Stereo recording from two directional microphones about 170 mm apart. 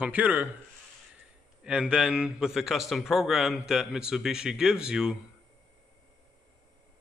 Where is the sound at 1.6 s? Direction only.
5° right (ahead or behind).